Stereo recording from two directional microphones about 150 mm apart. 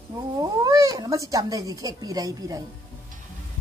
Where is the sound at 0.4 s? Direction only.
25° right (ahead or behind).